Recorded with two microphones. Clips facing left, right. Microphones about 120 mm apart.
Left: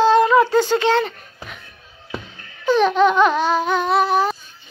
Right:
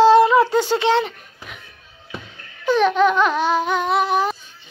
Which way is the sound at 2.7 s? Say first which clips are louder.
Left 1 dB; 5° right (ahead or behind).